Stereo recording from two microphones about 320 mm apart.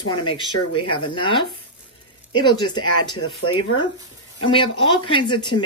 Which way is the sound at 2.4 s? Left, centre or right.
Centre.